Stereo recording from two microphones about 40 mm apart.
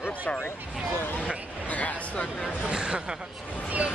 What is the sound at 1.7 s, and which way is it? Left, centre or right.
Speech, left.